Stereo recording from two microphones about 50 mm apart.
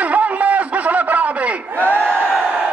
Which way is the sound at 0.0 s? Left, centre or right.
Right.